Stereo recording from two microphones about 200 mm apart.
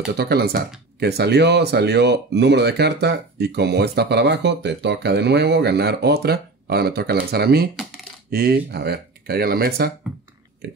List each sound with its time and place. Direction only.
0.2 s speech: 55° right (ahead or behind)